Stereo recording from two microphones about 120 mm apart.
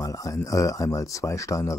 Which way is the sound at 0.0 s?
30° left (ahead or behind).